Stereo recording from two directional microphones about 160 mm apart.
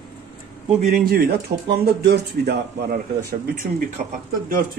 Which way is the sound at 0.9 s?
65° right (ahead or behind).